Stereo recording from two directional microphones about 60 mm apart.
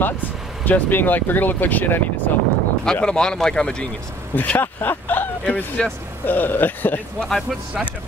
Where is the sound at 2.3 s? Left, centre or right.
Left.